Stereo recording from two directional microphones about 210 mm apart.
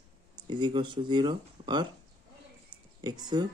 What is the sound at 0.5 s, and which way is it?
Speech, 20° right (ahead or behind).